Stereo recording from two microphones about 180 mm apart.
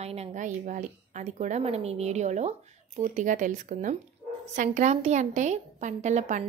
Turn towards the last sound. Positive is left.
turn(degrees=-40)  # may be behind; listen again after turning